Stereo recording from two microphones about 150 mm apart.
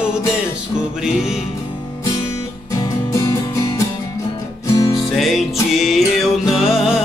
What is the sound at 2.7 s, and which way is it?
Music, 20° left (ahead or behind).